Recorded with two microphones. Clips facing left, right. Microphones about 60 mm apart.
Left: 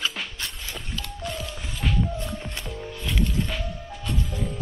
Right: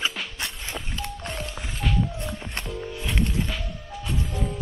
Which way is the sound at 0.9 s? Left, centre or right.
Right.